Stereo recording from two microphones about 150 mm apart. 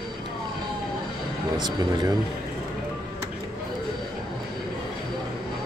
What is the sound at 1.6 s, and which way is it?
Speech, 30° right (ahead or behind).